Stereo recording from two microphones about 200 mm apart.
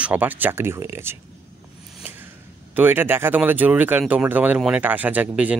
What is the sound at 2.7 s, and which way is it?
Speech, 10° right (ahead or behind).